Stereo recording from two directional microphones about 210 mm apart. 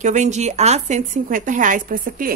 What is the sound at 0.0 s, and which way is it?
A woman's voice, 35° right (ahead or behind).